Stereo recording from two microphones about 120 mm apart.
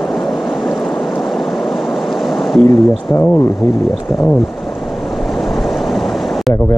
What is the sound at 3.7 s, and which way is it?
Speech, centre (ahead or behind).